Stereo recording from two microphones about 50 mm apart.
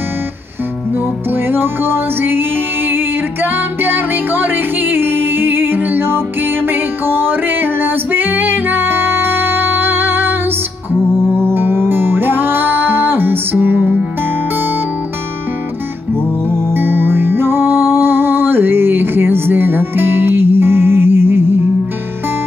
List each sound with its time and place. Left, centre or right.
1.3 s music: right
3.4 s music: right
11.3 s music: right
16.4 s music: right